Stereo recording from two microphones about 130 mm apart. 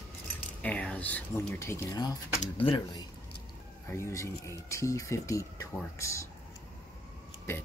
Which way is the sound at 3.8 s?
20° left (ahead or behind).